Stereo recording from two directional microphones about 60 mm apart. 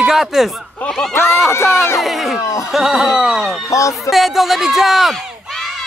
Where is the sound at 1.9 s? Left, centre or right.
Centre.